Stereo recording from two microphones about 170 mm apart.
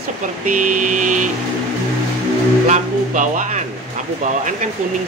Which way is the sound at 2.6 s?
45° right (ahead or behind).